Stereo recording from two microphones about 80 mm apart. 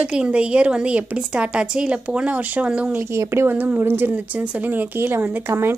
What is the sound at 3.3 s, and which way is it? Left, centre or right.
Speech, right.